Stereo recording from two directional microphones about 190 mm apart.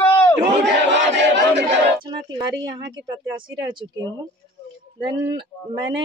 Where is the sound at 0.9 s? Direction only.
70° right (ahead or behind).